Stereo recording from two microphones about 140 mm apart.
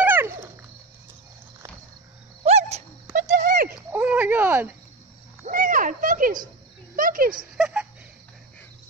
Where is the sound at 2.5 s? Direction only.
50° right (ahead or behind).